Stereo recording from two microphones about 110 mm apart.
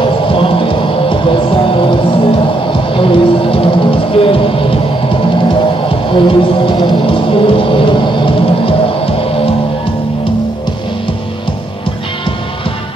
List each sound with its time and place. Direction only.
0.3 s music: 55° left (ahead or behind)